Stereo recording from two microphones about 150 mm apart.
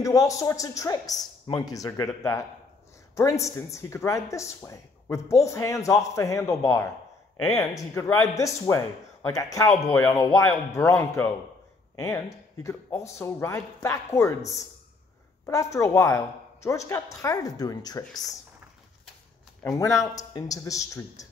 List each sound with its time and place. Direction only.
0.0 s speech: 20° left (ahead or behind)
3.2 s speech: 20° left (ahead or behind)
19.6 s speech: 20° left (ahead or behind)